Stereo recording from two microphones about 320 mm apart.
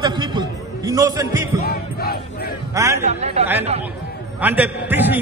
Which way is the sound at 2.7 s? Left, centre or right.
Centre.